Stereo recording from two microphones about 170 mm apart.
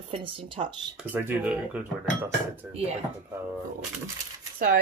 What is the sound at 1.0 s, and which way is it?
Speech, 10° right (ahead or behind).